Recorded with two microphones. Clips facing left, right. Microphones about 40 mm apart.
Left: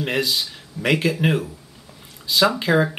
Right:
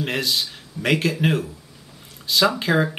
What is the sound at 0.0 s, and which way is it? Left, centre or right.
Speech, centre.